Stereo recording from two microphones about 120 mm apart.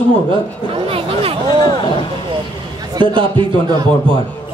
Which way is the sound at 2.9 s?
40° right (ahead or behind).